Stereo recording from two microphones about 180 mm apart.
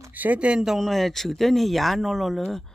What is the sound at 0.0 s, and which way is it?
Speech, 10° right (ahead or behind).